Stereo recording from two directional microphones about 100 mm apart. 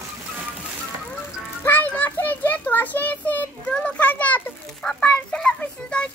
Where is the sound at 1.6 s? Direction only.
20° left (ahead or behind).